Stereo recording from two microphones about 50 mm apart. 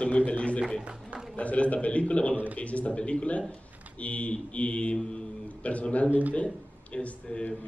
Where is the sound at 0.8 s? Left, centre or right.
Right.